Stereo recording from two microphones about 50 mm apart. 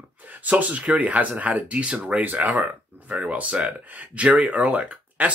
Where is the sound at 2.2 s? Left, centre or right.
Right.